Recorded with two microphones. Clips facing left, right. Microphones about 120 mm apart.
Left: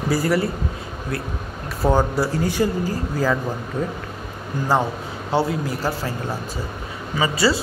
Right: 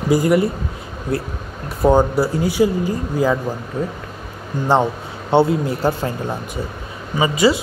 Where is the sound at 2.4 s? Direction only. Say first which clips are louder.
Right 5 dB; 15° right (ahead or behind).